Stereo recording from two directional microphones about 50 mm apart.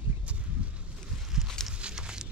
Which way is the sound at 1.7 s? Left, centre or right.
Centre.